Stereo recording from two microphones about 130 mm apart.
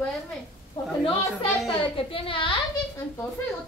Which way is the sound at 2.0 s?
45° left (ahead or behind).